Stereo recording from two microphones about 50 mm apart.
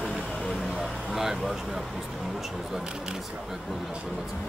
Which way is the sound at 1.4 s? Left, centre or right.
Centre.